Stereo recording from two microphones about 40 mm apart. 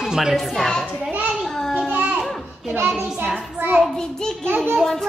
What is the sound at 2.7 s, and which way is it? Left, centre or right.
Speech, right.